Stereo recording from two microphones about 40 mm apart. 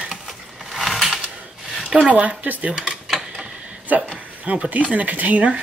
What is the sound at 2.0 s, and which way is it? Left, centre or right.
Speech, right.